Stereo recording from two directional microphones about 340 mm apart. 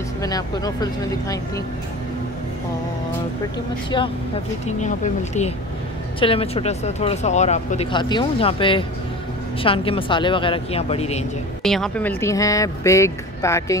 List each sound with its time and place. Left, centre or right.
0.2 s speech: centre
4.6 s speech: left
11.6 s speech: centre